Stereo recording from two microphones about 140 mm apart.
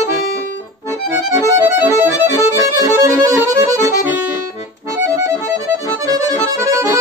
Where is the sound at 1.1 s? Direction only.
20° right (ahead or behind).